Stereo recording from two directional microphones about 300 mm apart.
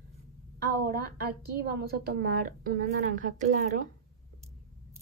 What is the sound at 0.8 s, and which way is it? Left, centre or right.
A woman's voice, right.